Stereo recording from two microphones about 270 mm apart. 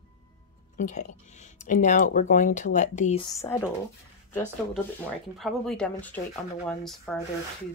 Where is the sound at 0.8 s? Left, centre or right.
Left; by 3.7 s centre.